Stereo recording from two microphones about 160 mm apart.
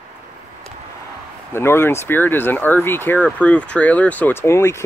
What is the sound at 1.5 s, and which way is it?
Speech, 15° left (ahead or behind).